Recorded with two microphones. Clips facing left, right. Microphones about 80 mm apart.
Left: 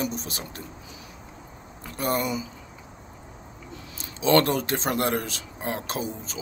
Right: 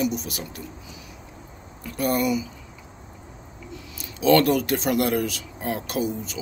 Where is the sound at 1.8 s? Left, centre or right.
Left.